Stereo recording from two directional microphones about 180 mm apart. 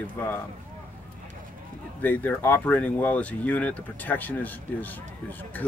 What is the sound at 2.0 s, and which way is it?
Speech, 10° left (ahead or behind).